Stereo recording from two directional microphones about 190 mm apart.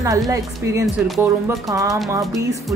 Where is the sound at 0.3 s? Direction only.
15° right (ahead or behind).